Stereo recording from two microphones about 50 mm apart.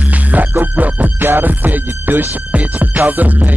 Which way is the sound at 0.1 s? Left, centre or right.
Right.